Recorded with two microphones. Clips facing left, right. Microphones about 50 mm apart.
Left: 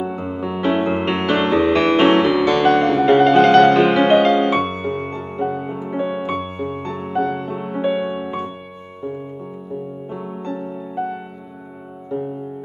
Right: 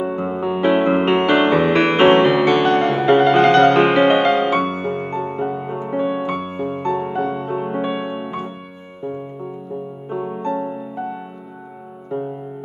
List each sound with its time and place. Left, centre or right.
0.0 s music: right
4.5 s music: centre
5.3 s music: right
5.8 s music: centre
6.2 s music: centre
7.2 s music: centre
7.8 s music: centre
10.0 s music: centre